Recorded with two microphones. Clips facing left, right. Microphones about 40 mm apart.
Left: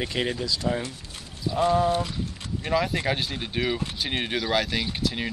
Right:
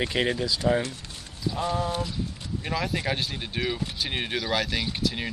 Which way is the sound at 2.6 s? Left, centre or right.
Centre.